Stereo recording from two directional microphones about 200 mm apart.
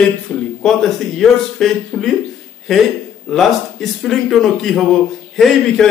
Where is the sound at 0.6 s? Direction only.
Centre (ahead or behind).